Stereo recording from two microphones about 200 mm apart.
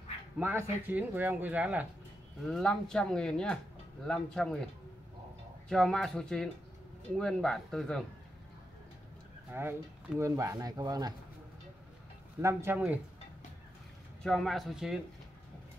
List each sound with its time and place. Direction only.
0.4 s speech: 10° right (ahead or behind)
2.4 s speech: centre (ahead or behind)
5.7 s speech: centre (ahead or behind)
9.5 s speech: 10° right (ahead or behind)
12.4 s speech: 15° right (ahead or behind)
14.2 s speech: centre (ahead or behind)